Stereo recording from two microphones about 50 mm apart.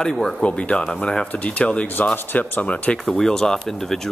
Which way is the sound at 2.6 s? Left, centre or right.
Left.